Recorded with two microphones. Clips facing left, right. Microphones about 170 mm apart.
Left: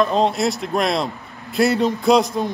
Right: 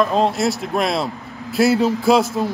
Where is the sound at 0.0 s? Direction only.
Centre (ahead or behind).